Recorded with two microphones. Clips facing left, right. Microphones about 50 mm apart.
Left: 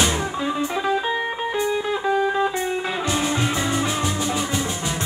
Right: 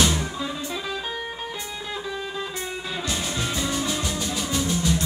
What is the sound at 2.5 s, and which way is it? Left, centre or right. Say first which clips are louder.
Music: left 7 dB; left.